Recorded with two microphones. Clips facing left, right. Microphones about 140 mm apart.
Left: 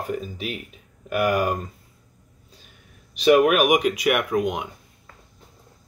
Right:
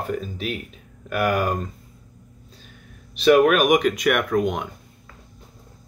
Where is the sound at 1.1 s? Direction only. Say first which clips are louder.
Even; 45° right (ahead or behind).